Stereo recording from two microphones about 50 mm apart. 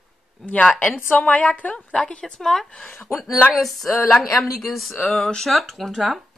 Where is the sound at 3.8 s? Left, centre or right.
Left.